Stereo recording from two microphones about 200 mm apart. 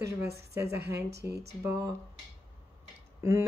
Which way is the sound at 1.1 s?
55° right (ahead or behind).